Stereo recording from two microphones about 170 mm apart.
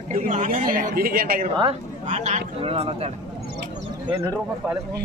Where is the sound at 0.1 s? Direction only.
50° right (ahead or behind).